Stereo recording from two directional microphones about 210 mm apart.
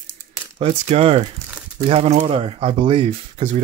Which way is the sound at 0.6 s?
30° right (ahead or behind).